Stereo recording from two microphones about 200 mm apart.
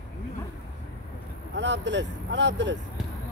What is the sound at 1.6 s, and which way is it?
Speech, 60° right (ahead or behind).